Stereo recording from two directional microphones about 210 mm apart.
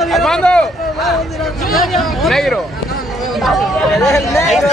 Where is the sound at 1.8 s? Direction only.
Centre (ahead or behind).